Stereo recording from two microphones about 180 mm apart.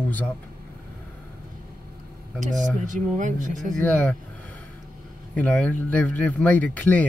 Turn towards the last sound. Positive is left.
turn(degrees=10)  # may be behind; listen again after turning